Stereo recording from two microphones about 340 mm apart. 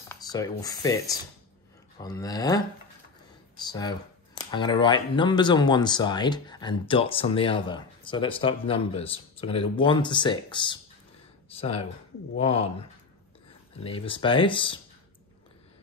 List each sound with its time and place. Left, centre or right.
0.1 s speech: centre
13.7 s speech: centre